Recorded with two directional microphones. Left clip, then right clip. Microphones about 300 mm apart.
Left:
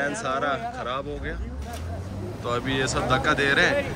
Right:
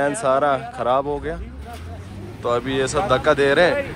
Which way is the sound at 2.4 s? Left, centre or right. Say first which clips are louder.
Right 5 dB; centre.